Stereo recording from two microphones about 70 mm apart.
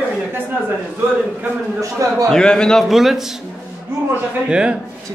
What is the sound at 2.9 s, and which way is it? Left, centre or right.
Speech, centre.